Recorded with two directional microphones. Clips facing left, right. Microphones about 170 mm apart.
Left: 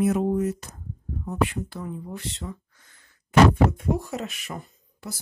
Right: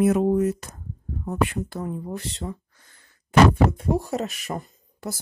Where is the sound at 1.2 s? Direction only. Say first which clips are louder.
Right 1 dB; 45° right (ahead or behind).